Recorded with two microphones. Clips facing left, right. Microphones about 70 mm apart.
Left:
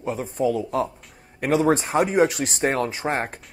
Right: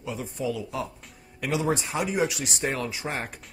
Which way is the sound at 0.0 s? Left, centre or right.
Left.